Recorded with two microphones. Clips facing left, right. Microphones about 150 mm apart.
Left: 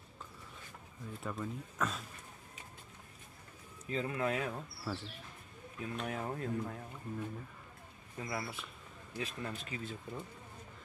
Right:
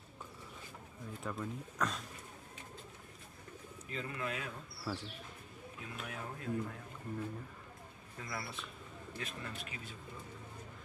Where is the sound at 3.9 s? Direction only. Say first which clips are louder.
Left 6 dB; 35° left (ahead or behind).